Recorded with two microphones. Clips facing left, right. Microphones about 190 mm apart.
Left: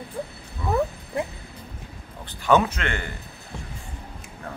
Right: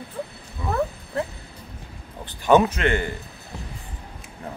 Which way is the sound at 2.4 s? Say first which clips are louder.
Right 3 dB; 20° right (ahead or behind).